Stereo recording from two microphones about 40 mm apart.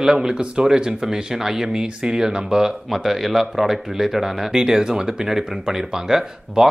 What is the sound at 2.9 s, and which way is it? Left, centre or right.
Speech, centre.